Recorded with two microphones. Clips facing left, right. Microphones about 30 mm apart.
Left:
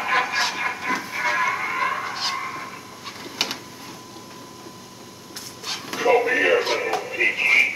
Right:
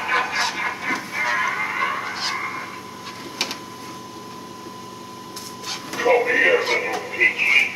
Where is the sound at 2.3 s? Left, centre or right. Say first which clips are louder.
Right 2 dB; centre.